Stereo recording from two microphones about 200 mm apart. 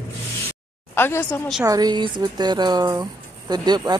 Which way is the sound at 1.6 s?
20° right (ahead or behind).